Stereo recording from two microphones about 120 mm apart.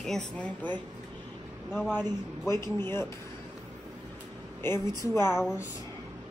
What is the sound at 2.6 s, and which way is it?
Speech, 20° left (ahead or behind).